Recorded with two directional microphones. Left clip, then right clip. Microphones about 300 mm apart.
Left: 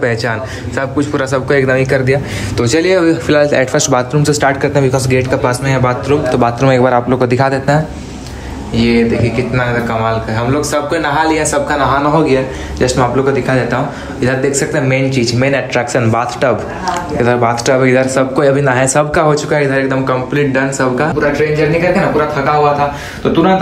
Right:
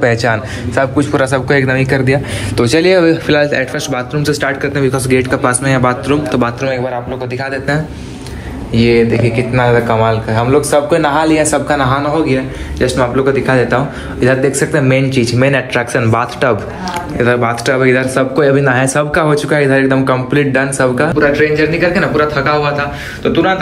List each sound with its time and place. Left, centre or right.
0.0 s speech: centre
6.7 s a man's voice: left
8.7 s speech: centre